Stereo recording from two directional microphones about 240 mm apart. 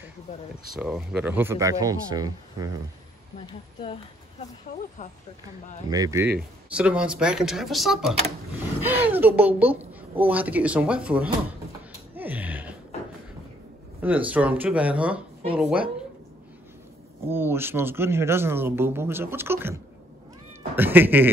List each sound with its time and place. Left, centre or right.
0.7 s speech: centre
3.3 s speech: left
5.9 s speech: centre
12.2 s a sound: centre
14.0 s speech: centre
17.3 s speech: centre